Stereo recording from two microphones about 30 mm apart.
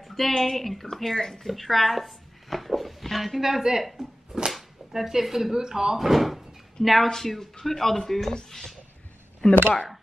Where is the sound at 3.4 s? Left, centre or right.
Centre.